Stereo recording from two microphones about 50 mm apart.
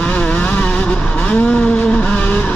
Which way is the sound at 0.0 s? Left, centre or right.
Left.